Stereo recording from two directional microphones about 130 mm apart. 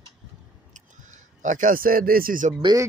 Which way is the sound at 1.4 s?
80° right.